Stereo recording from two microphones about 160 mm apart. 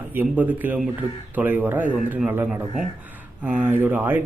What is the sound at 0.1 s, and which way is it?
A man's voice, 10° right (ahead or behind).